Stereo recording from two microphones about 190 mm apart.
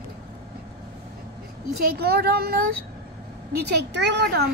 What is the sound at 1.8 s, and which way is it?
Speech, 55° right (ahead or behind).